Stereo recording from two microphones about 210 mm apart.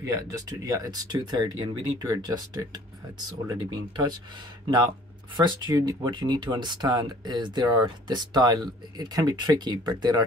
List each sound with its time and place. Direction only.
0.0 s speech: 15° right (ahead or behind)
5.3 s speech: 20° right (ahead or behind)